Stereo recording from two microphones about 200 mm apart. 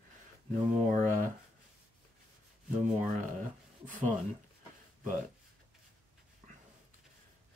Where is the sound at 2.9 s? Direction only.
40° right (ahead or behind).